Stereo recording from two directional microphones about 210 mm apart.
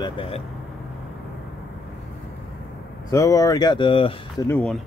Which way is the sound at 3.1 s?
15° left (ahead or behind).